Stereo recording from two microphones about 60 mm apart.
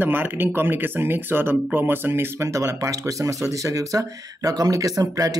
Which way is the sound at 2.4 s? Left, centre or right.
Right.